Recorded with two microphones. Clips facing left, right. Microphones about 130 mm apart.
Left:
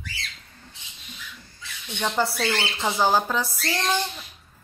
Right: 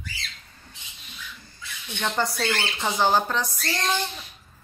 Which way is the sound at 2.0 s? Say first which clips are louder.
Left 1 dB; 5° left (ahead or behind).